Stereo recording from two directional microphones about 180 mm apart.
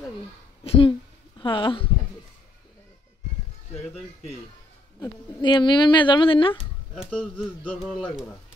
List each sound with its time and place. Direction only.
0.7 s speech: 30° left (ahead or behind)
5.0 s speech: 25° left (ahead or behind)
6.6 s speech: 5° right (ahead or behind)